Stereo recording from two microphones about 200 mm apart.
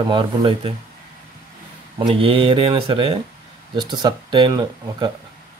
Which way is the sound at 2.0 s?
25° right (ahead or behind).